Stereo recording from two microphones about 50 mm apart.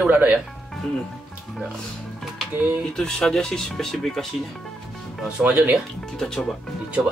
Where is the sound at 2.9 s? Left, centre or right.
Centre.